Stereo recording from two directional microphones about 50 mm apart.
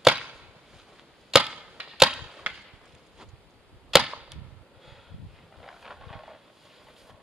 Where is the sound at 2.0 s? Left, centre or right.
Centre.